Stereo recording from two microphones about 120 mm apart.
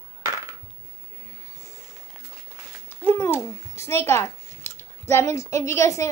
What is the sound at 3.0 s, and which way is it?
A child's voice, 20° left (ahead or behind).